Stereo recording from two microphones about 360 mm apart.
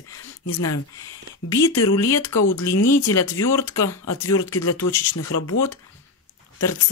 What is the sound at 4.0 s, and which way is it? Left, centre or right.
Speech, left.